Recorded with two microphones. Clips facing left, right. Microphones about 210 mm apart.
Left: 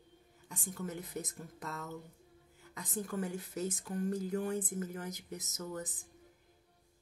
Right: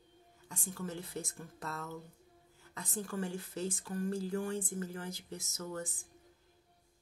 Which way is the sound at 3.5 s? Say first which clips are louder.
Left 1 dB; 20° left (ahead or behind).